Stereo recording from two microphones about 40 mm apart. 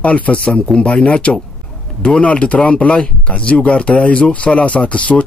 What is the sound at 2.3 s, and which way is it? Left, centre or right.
Speech, left.